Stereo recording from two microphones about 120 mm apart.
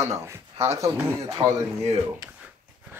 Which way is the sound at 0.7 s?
25° right (ahead or behind).